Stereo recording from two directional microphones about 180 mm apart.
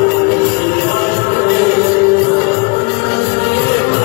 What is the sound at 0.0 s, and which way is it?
Music, 55° left (ahead or behind).